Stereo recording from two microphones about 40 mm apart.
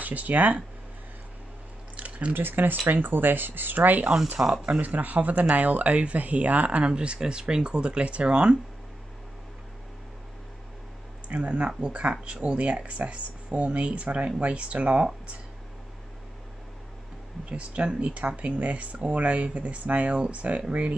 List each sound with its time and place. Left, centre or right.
0.0 s speech: right
2.0 s drip: right
2.3 s speech: right
6.9 s speech: right
11.2 s speech: right
17.5 s speech: right